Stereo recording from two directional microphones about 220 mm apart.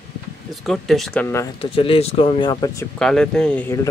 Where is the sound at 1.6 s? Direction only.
25° left (ahead or behind).